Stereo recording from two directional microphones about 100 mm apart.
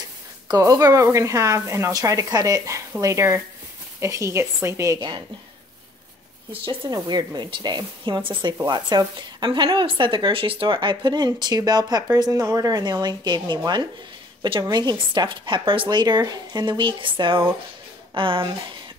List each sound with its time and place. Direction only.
0.5 s a woman's voice: 35° right (ahead or behind)
6.9 s speech: 45° right (ahead or behind)
14.6 s speech: 45° right (ahead or behind); by 18.5 s 60° right (ahead or behind)